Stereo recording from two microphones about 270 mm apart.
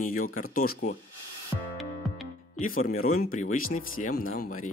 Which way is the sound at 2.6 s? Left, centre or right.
Left.